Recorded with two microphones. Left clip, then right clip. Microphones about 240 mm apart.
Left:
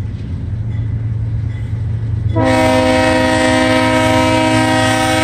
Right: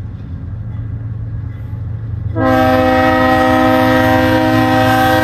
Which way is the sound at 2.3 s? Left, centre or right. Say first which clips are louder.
Right 1 dB; left.